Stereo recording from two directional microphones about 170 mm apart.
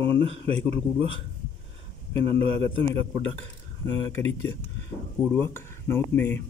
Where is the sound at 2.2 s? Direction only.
35° right (ahead or behind).